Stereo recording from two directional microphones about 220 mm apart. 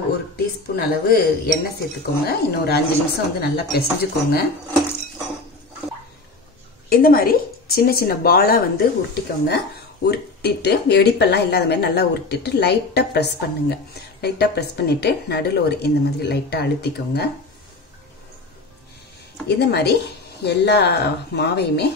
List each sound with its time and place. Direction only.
0.7 s speech: 45° left (ahead or behind)
6.9 s speech: 40° left (ahead or behind)
19.4 s speech: 50° left (ahead or behind)